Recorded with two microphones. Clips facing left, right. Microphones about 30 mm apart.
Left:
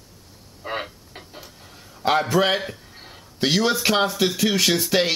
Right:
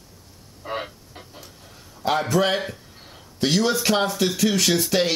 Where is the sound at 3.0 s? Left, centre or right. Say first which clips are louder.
Even; centre.